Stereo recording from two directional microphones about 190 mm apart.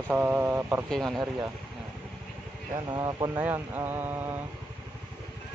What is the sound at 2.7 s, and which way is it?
Speech, 20° right (ahead or behind).